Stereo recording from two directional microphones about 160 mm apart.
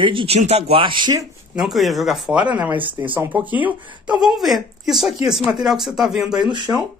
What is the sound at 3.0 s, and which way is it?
Speech, 10° right (ahead or behind).